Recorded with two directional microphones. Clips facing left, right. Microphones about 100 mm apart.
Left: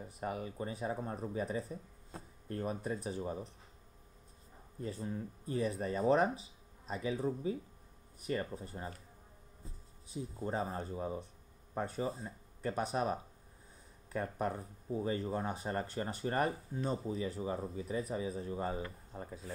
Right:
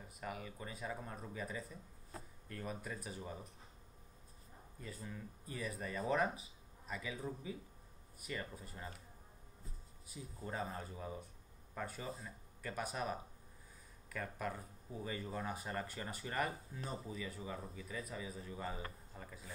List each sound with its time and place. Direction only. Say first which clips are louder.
0.0 s speech: left 7 dB; 35° left (ahead or behind)
4.7 s speech: left 9 dB; 30° left (ahead or behind)
10.0 s speech: left 8 dB; 30° left (ahead or behind)